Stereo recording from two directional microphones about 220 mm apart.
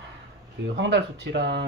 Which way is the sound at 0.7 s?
55° right (ahead or behind).